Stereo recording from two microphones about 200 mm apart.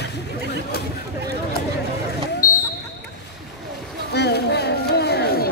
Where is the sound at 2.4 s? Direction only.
40° left (ahead or behind).